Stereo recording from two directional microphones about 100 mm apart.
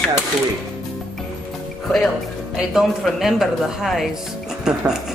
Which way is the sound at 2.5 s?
5° right (ahead or behind).